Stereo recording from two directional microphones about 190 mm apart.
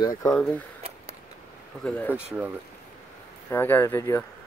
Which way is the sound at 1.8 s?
10° left (ahead or behind).